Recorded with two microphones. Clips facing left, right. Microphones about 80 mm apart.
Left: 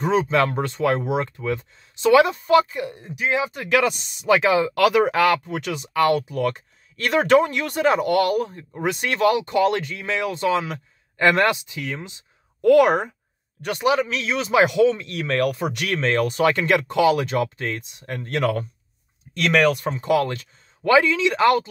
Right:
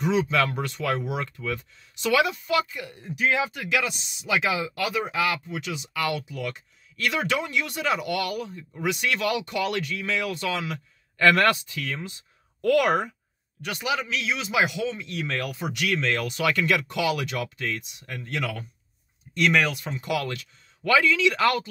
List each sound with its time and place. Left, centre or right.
0.0 s speech: left
3.7 s speech: left
4.7 s speech: left
13.6 s speech: left